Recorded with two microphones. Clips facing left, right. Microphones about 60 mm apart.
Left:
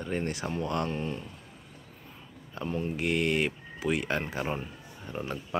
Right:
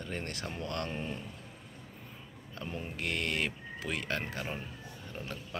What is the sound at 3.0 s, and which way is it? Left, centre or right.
Speech, centre.